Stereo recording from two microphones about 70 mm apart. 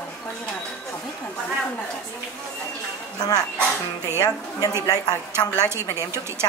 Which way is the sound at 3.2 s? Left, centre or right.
Left.